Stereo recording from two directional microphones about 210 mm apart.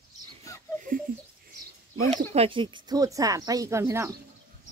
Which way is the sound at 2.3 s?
25° right (ahead or behind).